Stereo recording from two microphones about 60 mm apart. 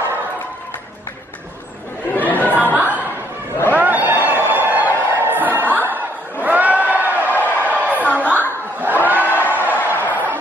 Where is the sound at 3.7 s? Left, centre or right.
Right.